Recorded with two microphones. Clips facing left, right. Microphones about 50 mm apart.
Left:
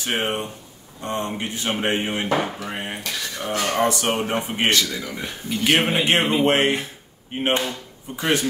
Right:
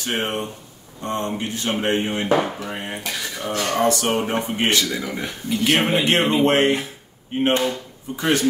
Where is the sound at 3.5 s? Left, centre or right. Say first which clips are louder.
Right 1 dB; centre.